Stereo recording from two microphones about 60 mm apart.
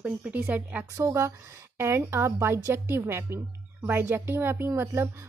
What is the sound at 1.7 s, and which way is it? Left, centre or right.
A woman's voice, right.